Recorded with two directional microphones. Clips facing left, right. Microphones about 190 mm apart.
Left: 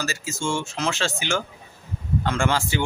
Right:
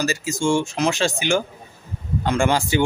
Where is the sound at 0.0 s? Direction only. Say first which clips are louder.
Right 6 dB; 15° right (ahead or behind).